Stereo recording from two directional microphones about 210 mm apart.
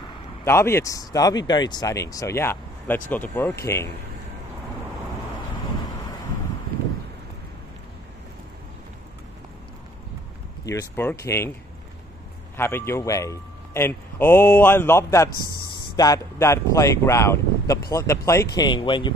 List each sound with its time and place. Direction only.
0.5 s speech: 10° left (ahead or behind)
10.6 s speech: 15° left (ahead or behind)
12.5 s speech: 10° left (ahead or behind)